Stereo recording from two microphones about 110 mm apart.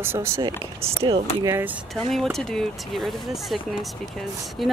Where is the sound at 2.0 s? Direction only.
5° left (ahead or behind).